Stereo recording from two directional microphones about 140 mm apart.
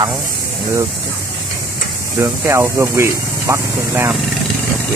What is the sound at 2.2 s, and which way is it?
Speech, 20° right (ahead or behind).